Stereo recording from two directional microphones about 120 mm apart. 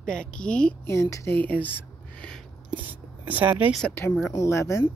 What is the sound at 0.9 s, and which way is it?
Speech, 25° left (ahead or behind).